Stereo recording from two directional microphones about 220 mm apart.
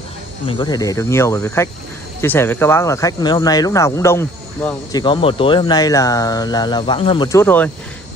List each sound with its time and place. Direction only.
0.5 s speech: 20° left (ahead or behind)
5.0 s speech: 20° left (ahead or behind)